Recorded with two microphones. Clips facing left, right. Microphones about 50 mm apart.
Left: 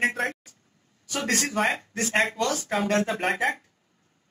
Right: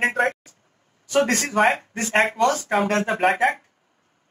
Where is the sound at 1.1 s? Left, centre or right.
Right.